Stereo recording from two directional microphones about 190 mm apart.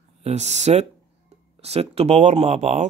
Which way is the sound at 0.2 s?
35° right (ahead or behind).